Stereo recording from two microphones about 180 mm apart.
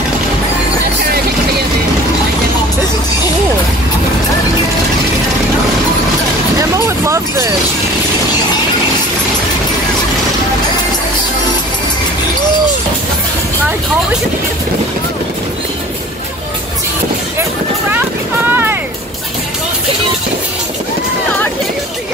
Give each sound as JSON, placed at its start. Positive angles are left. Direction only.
{"t": 6.6, "sound": "vehicle", "side_deg": -15}
{"t": 17.9, "sound": "boat", "side_deg": -10}